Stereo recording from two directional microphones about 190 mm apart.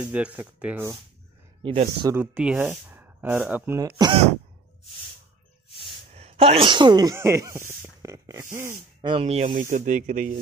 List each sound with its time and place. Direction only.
0.0 s speech: 5° right (ahead or behind)
1.6 s speech: 25° right (ahead or behind)
2.1 s speech: 5° right (ahead or behind)
6.1 s speech: 30° right (ahead or behind); by 8.7 s 15° right (ahead or behind)
9.0 s speech: 30° right (ahead or behind)